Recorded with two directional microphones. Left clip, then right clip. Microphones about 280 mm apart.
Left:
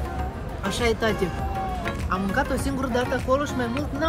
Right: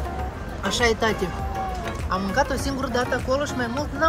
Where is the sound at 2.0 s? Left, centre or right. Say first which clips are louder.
Right 3 dB; centre.